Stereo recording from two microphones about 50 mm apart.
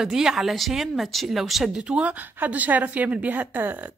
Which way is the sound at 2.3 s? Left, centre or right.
Right.